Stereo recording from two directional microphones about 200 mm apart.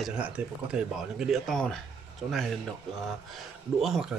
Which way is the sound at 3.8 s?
Centre (ahead or behind).